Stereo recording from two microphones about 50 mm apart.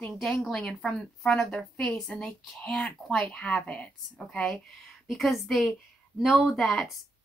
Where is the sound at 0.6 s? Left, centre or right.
Left.